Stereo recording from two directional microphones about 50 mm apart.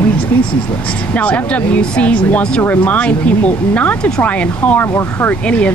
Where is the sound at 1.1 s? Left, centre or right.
Left.